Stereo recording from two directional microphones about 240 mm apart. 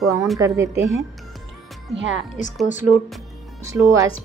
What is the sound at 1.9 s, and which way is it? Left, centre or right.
Speech, right.